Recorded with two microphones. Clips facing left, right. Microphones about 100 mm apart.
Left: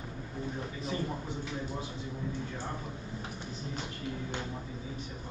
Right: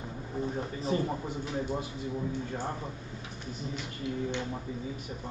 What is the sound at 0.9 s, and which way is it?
Speech, 35° right (ahead or behind).